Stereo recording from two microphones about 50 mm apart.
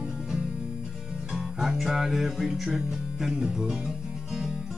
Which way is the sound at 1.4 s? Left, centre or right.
Centre.